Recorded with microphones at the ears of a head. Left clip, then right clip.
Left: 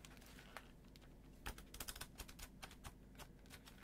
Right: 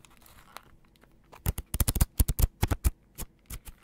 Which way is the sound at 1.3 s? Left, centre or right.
Right.